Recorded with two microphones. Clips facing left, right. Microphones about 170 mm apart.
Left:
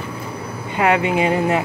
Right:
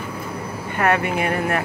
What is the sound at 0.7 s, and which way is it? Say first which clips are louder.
Speech: left 3 dB; 15° left (ahead or behind).